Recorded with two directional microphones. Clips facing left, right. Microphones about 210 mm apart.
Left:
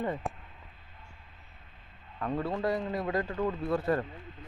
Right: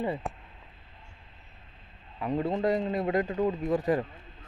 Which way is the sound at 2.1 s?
15° right (ahead or behind).